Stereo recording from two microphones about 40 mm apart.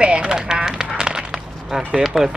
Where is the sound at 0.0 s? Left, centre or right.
Right.